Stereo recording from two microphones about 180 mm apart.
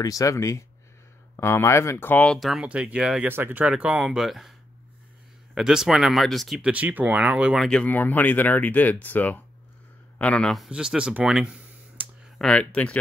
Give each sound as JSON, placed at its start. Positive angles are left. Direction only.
{"t": 0.0, "sound": "speech", "side_deg": 20}